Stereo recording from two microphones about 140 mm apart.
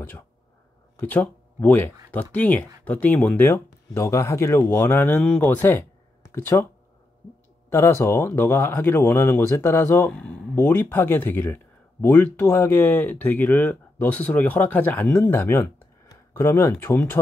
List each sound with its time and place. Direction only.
0.9 s speech: 10° left (ahead or behind)
3.4 s speech: 20° left (ahead or behind)
7.7 s speech: 20° left (ahead or behind)